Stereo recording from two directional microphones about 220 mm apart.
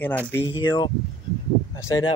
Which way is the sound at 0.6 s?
20° left (ahead or behind).